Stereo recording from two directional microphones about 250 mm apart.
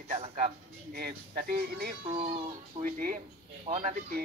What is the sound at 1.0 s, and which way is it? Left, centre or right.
Speech, right.